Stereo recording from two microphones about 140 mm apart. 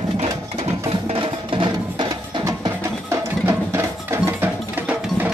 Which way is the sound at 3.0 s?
20° right (ahead or behind).